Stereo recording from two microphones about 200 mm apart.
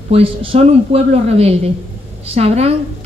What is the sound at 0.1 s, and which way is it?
A woman's voice, 30° right (ahead or behind).